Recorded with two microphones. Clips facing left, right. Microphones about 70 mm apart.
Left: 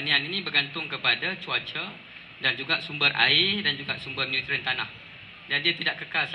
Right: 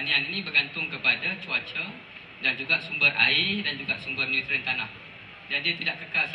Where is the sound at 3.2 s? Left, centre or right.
Left.